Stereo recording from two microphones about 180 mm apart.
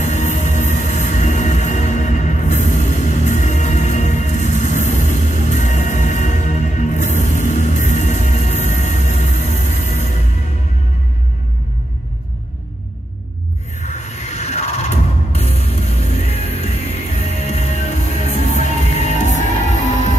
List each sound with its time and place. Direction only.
0.0 s music: 40° left (ahead or behind)
13.7 s music: 40° left (ahead or behind)